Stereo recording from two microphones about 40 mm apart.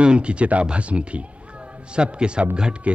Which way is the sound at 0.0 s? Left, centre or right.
Right.